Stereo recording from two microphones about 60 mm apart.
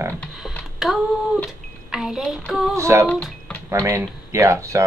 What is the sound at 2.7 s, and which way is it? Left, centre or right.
Speech, right.